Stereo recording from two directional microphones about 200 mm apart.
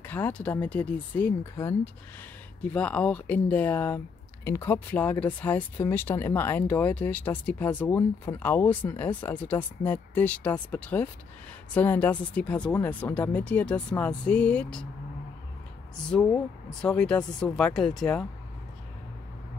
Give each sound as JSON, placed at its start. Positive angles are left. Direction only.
{"t": 0.0, "sound": "speech", "side_deg": 10}
{"t": 16.0, "sound": "speech", "side_deg": 5}